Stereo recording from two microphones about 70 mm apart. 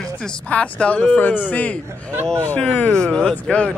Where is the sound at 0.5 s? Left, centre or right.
Centre.